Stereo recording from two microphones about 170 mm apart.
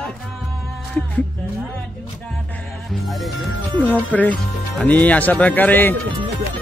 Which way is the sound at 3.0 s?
Centre (ahead or behind).